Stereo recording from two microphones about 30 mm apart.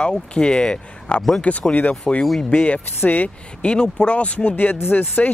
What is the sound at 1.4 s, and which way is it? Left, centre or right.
Speech, left.